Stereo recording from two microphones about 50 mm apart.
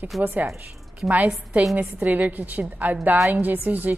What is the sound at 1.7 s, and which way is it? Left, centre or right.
A woman's voice, right.